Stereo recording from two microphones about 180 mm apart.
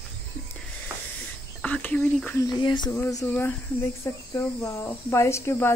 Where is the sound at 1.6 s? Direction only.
10° left (ahead or behind).